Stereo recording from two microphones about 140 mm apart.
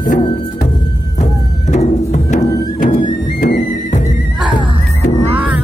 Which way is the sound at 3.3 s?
90° left.